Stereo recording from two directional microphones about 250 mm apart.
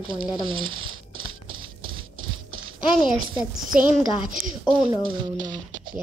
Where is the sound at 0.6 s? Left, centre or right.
Right.